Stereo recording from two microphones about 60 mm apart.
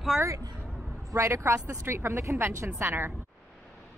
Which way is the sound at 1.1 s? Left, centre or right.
Right.